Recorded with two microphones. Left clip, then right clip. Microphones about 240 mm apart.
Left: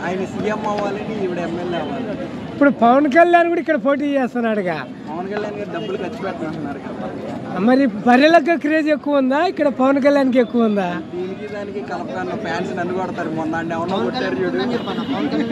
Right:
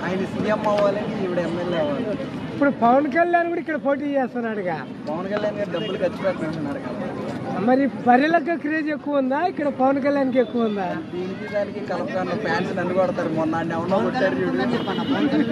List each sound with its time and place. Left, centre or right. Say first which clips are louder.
0.1 s speech: left 1 dB; centre
2.6 s speech: left 4 dB; left
7.6 s speech: left 3 dB; left
12.2 s speech: even; centre